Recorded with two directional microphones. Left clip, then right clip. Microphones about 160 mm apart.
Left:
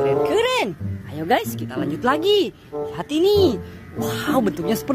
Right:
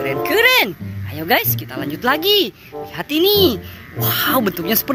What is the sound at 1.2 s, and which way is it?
A child's voice, 5° right (ahead or behind).